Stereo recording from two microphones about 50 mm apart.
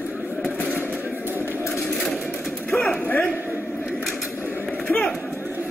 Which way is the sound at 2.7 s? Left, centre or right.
Left.